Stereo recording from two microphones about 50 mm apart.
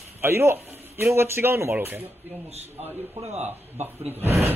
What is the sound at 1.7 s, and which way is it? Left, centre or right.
Speech, right.